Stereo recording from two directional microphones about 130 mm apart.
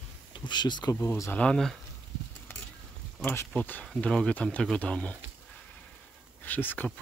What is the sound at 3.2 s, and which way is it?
Speech, 20° left (ahead or behind).